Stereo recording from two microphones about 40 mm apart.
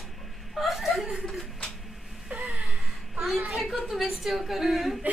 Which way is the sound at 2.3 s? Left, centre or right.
Right.